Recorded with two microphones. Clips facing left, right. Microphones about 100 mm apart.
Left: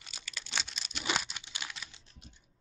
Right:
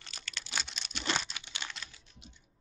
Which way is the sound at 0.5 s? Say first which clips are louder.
Even; centre (ahead or behind).